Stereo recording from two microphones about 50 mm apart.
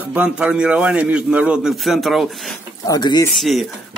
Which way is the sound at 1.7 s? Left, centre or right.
Centre.